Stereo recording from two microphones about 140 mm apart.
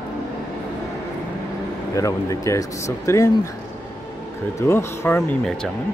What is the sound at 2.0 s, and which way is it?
Speech, 20° left (ahead or behind).